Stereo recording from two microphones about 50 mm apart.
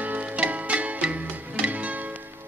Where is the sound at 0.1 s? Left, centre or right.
Right.